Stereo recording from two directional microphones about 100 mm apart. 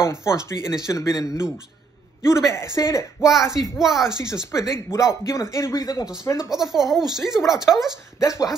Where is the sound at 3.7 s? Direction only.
5° right (ahead or behind).